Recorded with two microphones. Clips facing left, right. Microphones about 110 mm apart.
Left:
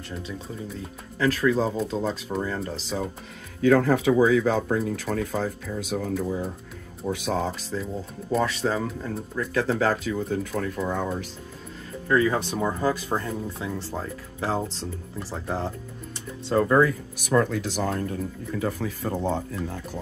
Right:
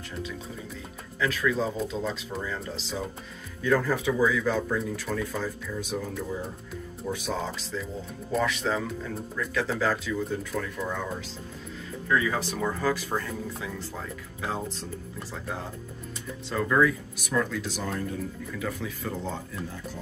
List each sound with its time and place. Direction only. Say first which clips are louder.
1.2 s speech: left 5 dB; 40° left (ahead or behind)
3.6 s speech: left 6 dB; 70° left (ahead or behind); by 7.8 s 50° left (ahead or behind)
8.4 s speech: left 2 dB; 35° left (ahead or behind); by 10.7 s 50° left (ahead or behind)
10.8 s speech: left 6 dB; 40° left (ahead or behind)
12.1 s speech: left 5 dB; 35° left (ahead or behind)
12.4 s speech: left 3 dB; 20° left (ahead or behind)
17.3 s speech: left 6 dB; 55° left (ahead or behind)